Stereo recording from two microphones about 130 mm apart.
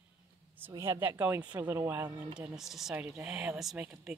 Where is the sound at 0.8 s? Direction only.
20° right (ahead or behind).